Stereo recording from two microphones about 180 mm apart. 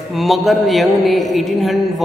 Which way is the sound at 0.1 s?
Centre (ahead or behind).